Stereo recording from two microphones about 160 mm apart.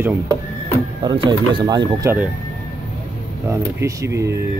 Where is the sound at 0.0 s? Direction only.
15° right (ahead or behind).